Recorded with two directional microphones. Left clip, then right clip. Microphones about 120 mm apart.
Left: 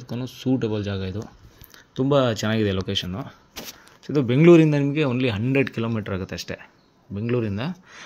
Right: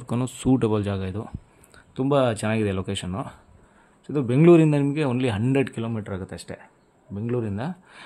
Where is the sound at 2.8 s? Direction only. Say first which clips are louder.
Left 3 dB; 10° right (ahead or behind).